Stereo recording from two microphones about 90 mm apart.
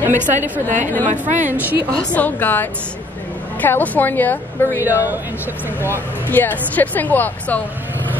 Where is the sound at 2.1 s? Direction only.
20° left (ahead or behind).